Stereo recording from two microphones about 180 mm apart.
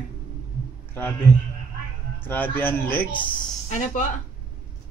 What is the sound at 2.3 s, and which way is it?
Speech, 10° left (ahead or behind).